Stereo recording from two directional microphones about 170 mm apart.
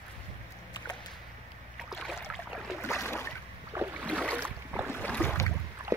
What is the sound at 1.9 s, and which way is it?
Boat, centre (ahead or behind).